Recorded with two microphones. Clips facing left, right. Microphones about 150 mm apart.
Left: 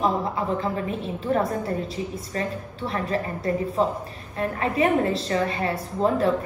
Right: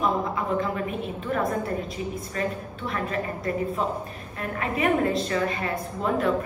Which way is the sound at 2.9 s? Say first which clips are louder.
Left 2 dB; 30° left (ahead or behind).